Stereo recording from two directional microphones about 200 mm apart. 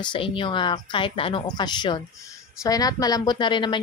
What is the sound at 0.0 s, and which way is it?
A woman's voice, 25° left (ahead or behind).